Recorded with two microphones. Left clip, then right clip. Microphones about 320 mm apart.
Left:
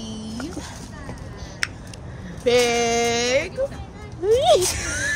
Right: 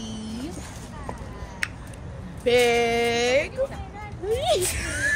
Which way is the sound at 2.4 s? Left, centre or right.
Centre.